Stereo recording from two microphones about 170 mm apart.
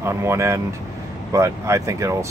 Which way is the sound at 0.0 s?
15° right (ahead or behind).